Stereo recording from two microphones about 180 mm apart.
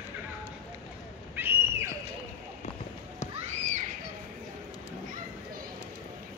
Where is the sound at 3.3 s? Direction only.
40° right (ahead or behind).